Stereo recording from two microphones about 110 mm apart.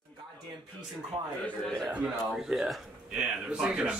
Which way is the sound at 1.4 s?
5° left (ahead or behind).